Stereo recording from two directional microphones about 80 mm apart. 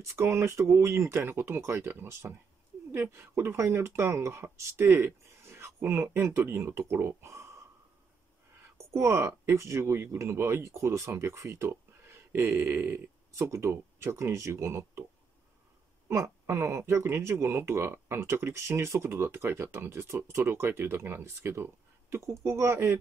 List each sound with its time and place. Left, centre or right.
0.0 s speech: right
8.7 s speech: right
16.1 s speech: right